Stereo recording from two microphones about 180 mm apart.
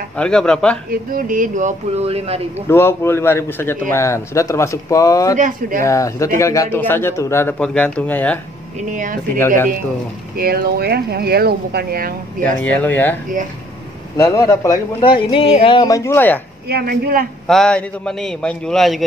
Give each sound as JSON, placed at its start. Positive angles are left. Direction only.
{"t": 0.2, "sound": "a man's voice", "side_deg": 5}
{"t": 1.1, "sound": "speech", "side_deg": -50}
{"t": 2.7, "sound": "a man's voice", "side_deg": 15}
{"t": 5.4, "sound": "speech", "side_deg": -50}
{"t": 5.9, "sound": "a man's voice", "side_deg": 15}
{"t": 8.9, "sound": "speech", "side_deg": -45}
{"t": 10.3, "sound": "speech", "side_deg": -55}
{"t": 12.5, "sound": "a man's voice", "side_deg": 10}
{"t": 14.1, "sound": "a man's voice", "side_deg": 15}
{"t": 16.6, "sound": "speech", "side_deg": -60}
{"t": 17.5, "sound": "a man's voice", "side_deg": 5}